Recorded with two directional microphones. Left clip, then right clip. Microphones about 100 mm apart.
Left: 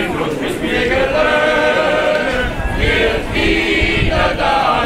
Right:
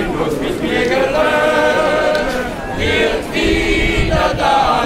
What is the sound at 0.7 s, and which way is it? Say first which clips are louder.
Choir: even; 15° right (ahead or behind).